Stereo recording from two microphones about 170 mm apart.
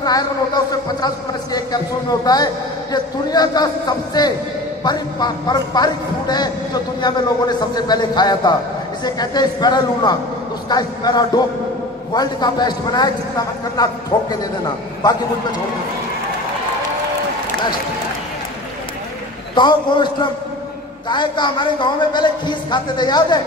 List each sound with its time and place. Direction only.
0.0 s a man's voice: 20° left (ahead or behind)
15.0 s a man's voice: 25° left (ahead or behind)
19.5 s a man's voice: 25° left (ahead or behind)